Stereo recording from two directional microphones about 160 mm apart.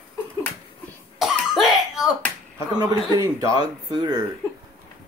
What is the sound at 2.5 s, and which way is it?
Speech, 25° right (ahead or behind).